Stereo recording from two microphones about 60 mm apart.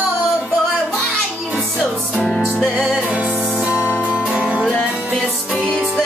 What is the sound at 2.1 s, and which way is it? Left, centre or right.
Music, centre.